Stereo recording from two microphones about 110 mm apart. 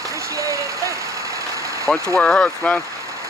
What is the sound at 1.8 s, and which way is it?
Speech, 5° left (ahead or behind).